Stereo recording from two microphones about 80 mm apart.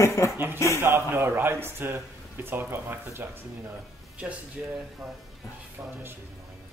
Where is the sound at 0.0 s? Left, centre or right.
Left.